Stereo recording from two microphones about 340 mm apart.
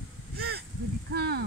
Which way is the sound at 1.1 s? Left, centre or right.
Right.